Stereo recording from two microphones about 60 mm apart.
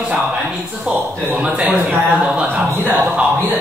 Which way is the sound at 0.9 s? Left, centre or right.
Centre.